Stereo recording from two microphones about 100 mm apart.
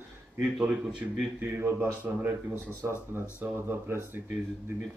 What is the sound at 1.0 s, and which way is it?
Speech, 25° right (ahead or behind).